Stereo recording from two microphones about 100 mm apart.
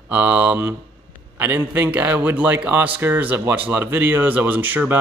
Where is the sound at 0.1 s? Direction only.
15° right (ahead or behind).